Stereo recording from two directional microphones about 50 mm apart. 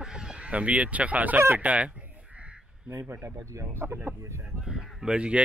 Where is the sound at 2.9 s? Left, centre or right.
Right.